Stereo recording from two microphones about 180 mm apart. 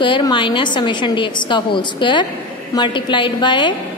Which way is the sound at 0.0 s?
25° left (ahead or behind).